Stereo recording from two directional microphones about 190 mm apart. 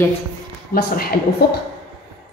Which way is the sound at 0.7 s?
55° left (ahead or behind).